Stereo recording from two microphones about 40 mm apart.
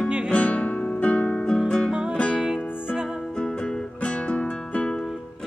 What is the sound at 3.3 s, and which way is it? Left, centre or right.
Music, left.